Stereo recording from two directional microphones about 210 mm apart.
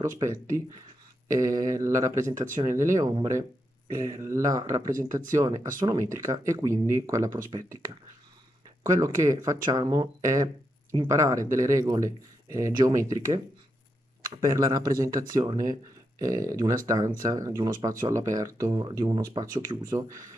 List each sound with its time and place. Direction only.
0.2 s speech: 15° right (ahead or behind)